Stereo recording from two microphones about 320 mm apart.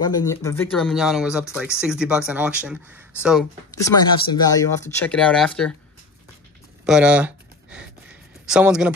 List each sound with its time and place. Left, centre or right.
0.0 s speech: centre
3.7 s speech: centre
6.9 s a sound: centre